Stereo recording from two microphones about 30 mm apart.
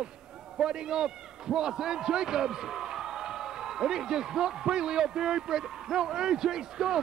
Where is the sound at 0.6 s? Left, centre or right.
Right.